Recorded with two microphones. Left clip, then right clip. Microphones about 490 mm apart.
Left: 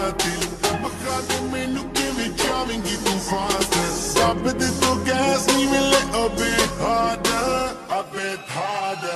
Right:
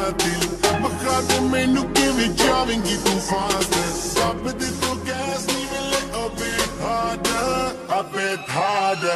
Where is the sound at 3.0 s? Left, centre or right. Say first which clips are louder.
Right 2 dB; right.